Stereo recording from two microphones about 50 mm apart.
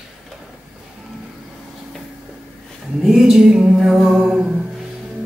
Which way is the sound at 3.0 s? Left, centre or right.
Centre.